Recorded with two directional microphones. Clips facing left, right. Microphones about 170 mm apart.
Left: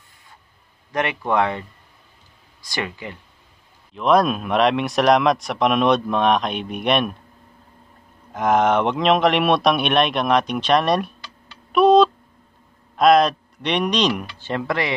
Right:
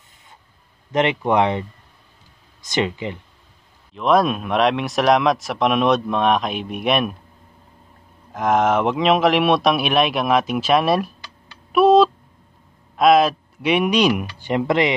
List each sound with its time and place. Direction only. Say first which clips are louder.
0.9 s speech: right 3 dB; 20° right (ahead or behind)
3.9 s speech: even; centre (ahead or behind)
8.3 s speech: even; centre (ahead or behind)
11.7 s tick: even; 5° right (ahead or behind)
12.9 s speech: even; centre (ahead or behind); by 15.0 s 20° right (ahead or behind)